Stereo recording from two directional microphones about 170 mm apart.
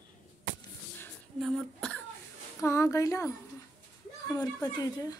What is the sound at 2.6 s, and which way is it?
Speech, 20° left (ahead or behind).